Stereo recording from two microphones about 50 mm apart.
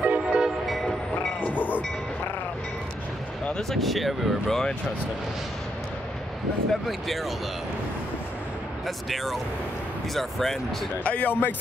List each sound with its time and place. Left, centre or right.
0.0 s train: right
1.4 s train: left
3.7 s speech: centre
6.7 s speech: centre
8.8 s speech: centre
11.1 s speech: left